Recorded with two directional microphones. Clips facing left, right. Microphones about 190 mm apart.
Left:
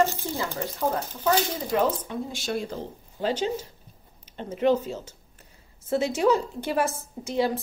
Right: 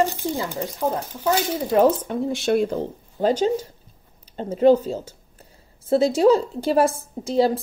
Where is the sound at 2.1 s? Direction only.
60° right (ahead or behind).